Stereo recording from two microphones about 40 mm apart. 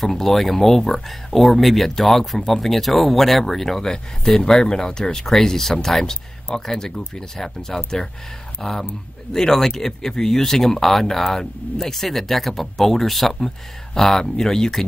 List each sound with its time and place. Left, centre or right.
0.0 s speech: centre